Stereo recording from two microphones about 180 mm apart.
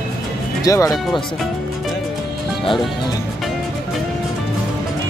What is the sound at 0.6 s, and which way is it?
Speech, 20° left (ahead or behind).